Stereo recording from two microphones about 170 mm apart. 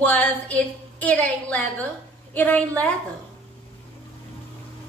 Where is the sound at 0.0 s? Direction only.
10° left (ahead or behind).